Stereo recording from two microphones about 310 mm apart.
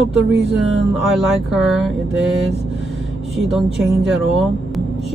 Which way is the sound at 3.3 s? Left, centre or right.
Centre.